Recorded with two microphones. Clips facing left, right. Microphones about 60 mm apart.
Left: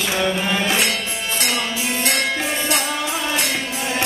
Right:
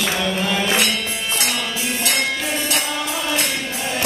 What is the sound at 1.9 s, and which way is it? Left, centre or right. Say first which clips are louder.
Music: even; left.